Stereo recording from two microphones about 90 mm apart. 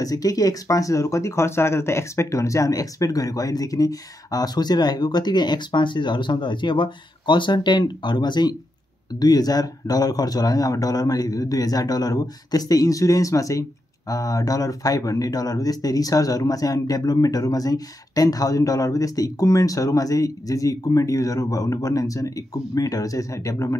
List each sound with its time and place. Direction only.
0.0 s speech: 40° left (ahead or behind)